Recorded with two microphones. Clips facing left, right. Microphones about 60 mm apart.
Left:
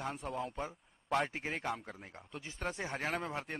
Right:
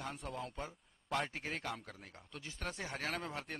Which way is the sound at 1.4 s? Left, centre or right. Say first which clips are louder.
Left 3 dB; centre.